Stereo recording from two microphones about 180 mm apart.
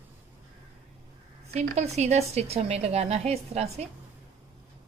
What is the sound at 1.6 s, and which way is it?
A woman's voice, 35° right (ahead or behind).